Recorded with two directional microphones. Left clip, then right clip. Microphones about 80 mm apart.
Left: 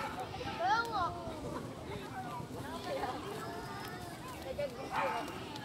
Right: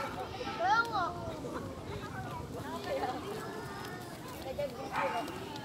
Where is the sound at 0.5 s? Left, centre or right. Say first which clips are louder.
Right 3 dB; left.